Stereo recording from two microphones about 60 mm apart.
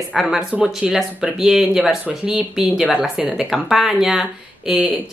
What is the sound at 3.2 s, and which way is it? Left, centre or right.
Speech, centre.